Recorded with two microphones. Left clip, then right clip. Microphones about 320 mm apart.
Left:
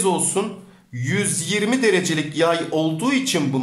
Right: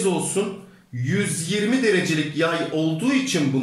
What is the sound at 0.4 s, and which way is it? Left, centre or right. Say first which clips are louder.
A man's voice: left 1 dB; centre.